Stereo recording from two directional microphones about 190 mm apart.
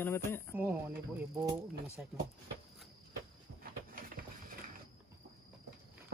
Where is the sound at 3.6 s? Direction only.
50° right (ahead or behind).